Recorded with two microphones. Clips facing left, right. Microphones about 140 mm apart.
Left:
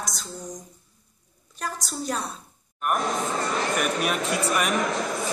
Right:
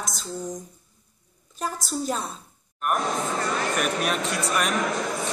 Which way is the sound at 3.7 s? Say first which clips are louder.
Even; centre (ahead or behind).